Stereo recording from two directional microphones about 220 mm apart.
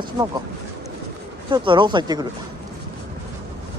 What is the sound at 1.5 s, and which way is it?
Speech, 20° right (ahead or behind).